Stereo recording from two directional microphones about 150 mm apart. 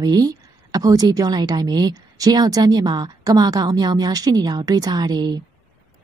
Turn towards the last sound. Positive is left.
turn(degrees=-25)  # may be behind; listen again after turning